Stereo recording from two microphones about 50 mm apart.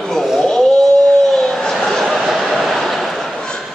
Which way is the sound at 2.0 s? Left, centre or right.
Centre.